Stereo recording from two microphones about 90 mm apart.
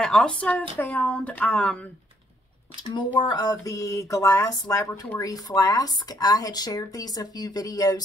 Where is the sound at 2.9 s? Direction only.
55° left (ahead or behind).